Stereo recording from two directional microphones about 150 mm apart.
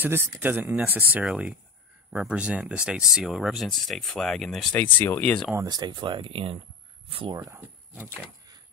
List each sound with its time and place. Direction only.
0.0 s speech: 15° right (ahead or behind); by 5.5 s 10° left (ahead or behind)
5.5 s speech: 25° right (ahead or behind)
7.3 s speech: 20° right (ahead or behind)